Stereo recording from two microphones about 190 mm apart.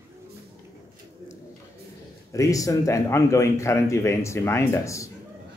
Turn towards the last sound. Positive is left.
turn(degrees=15)  # may be behind; listen again after turning